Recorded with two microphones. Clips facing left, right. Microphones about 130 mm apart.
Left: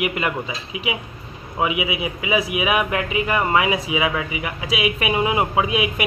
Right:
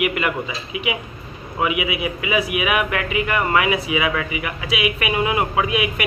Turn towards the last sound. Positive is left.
turn(degrees=25)  # may be behind; listen again after turning